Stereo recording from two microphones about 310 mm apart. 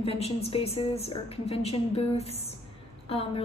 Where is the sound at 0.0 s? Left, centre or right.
Centre.